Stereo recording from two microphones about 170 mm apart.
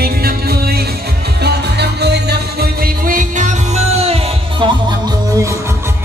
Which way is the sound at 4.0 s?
35° right (ahead or behind).